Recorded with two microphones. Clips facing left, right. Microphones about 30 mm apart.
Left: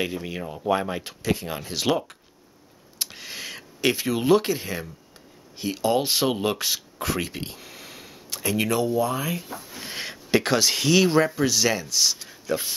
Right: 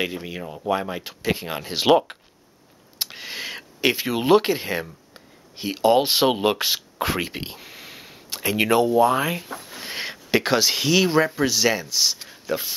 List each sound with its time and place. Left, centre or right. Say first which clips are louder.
0.0 s speech: right 1 dB; centre
0.3 s speech: even; centre
1.2 s speech: right 2 dB; right
9.8 s a sound: right 3 dB; centre
10.1 s speech: right 1 dB; centre